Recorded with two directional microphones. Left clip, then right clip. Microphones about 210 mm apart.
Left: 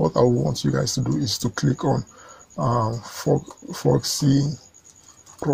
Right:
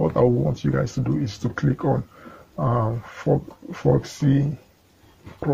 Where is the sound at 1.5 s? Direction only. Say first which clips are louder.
Right 2 dB; 40° left (ahead or behind).